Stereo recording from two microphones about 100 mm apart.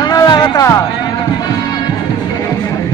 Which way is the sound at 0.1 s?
45° left (ahead or behind).